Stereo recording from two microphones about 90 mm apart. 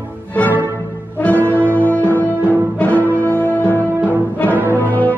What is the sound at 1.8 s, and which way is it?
Music, 20° left (ahead or behind).